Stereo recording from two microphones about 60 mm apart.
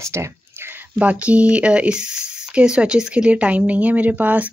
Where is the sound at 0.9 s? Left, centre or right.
Right.